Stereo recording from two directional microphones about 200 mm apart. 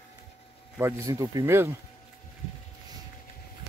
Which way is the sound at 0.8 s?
15° right (ahead or behind).